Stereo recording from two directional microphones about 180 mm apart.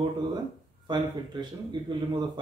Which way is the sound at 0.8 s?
25° right (ahead or behind).